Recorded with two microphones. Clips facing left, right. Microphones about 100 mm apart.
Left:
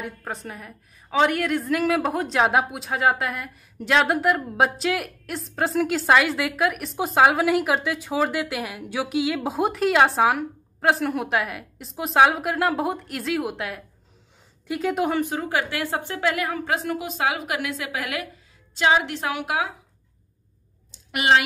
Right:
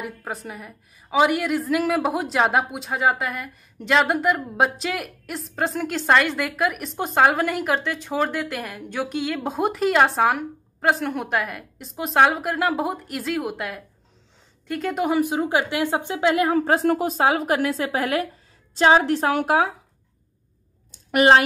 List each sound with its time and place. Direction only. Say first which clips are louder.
0.0 s a woman's voice: right 1 dB; 5° right (ahead or behind)
15.1 s a woman's voice: right 3 dB; 15° right (ahead or behind); by 19.7 s 40° right (ahead or behind)
21.1 s speech: right 5 dB; 40° right (ahead or behind)